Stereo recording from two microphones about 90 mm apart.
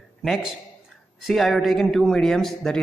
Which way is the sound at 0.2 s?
Centre (ahead or behind).